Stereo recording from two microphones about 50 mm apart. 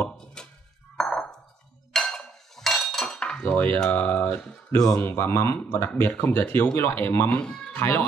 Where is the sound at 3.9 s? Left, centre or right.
Left.